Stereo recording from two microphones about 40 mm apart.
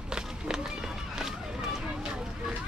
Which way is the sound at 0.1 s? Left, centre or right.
Centre.